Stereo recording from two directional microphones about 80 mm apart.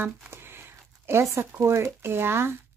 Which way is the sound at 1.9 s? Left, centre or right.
Right.